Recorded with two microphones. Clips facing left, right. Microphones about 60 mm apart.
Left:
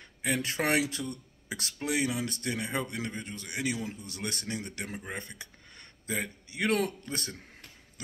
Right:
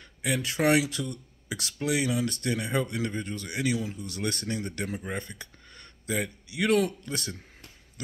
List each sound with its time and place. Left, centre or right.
0.0 s speech: left